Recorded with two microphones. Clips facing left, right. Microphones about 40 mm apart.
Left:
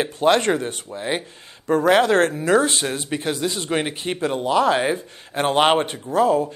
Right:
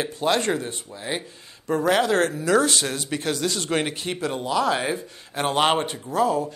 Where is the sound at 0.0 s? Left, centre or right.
Left.